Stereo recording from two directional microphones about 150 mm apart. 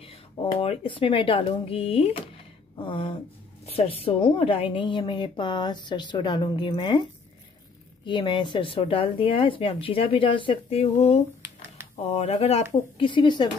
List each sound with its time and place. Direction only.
0.0 s a woman's voice: 35° left (ahead or behind)
8.0 s a woman's voice: 30° left (ahead or behind)
12.9 s a woman's voice: 35° left (ahead or behind)